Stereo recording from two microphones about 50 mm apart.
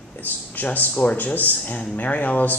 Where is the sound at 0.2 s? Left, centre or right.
Left.